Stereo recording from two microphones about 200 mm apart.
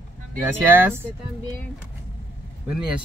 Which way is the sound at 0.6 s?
10° right (ahead or behind).